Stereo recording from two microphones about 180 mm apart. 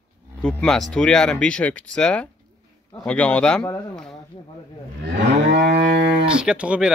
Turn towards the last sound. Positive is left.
turn(degrees=-5)  # may be behind; listen again after turning